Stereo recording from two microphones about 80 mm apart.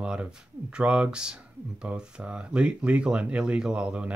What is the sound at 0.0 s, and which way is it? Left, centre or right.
Speech, centre.